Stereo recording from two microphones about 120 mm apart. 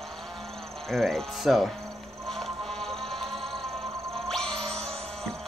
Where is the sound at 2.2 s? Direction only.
Centre (ahead or behind).